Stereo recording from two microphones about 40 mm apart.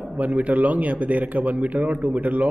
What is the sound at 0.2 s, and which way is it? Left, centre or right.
A man's voice, right.